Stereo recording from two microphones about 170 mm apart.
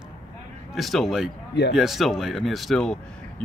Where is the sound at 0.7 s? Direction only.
Centre (ahead or behind).